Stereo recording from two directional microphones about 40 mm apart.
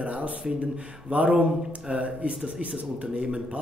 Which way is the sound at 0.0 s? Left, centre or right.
Right.